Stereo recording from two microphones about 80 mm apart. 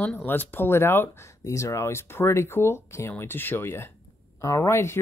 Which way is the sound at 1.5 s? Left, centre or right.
Left.